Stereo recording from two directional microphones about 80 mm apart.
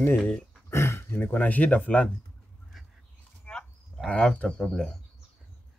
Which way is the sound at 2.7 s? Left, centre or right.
Centre.